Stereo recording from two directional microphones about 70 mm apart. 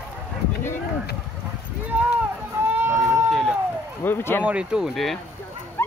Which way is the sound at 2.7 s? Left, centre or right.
Right.